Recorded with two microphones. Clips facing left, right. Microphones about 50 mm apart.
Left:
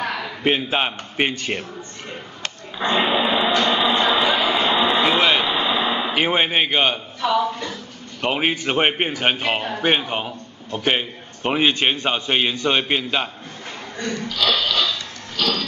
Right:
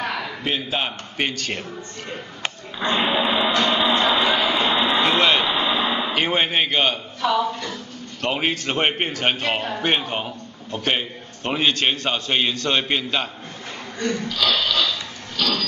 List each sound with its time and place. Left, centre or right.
0.4 s a man's voice: left
2.8 s a man's voice: centre
14.0 s speech: centre